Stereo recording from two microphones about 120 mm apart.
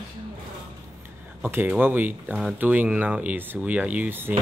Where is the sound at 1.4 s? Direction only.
20° right (ahead or behind).